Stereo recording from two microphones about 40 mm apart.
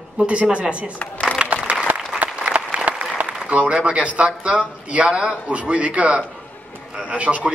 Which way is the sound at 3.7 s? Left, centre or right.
Right.